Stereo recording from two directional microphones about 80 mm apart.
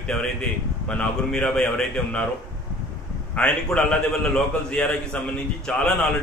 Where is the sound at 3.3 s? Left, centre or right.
Centre.